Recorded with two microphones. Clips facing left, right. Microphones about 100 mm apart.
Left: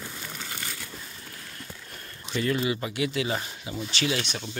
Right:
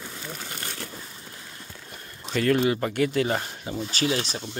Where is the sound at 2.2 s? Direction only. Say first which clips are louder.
Right 5 dB; 50° right (ahead or behind).